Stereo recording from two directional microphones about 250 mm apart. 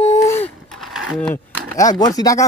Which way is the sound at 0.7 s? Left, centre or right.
Centre.